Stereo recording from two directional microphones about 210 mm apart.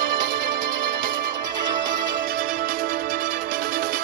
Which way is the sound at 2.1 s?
40° right (ahead or behind).